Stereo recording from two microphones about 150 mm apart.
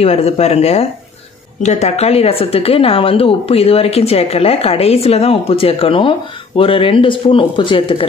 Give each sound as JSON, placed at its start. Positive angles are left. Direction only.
{"t": 0.0, "sound": "a woman's voice", "side_deg": 45}